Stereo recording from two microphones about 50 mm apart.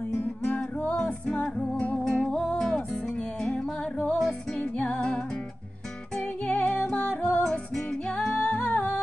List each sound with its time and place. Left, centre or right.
0.1 s music: left
0.9 s music: centre
2.0 s music: centre
4.6 s music: left
7.4 s music: centre
8.3 s music: left